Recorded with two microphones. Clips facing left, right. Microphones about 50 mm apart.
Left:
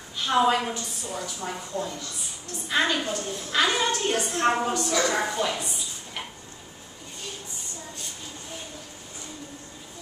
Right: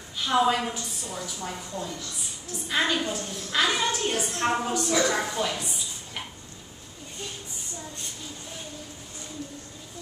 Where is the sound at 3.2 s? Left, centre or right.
Centre.